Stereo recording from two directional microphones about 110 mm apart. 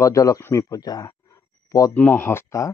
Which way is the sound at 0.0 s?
30° left (ahead or behind).